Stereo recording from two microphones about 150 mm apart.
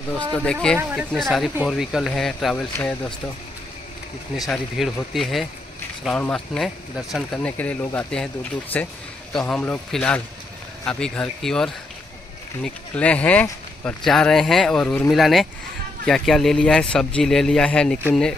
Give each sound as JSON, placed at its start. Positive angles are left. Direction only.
{"t": 0.3, "sound": "speech", "side_deg": 5}
{"t": 0.7, "sound": "speech", "side_deg": -10}
{"t": 4.4, "sound": "speech", "side_deg": 0}
{"t": 7.3, "sound": "speech", "side_deg": 10}